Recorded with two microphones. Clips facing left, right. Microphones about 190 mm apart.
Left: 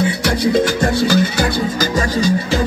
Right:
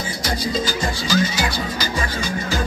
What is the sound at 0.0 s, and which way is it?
Music, 65° left (ahead or behind).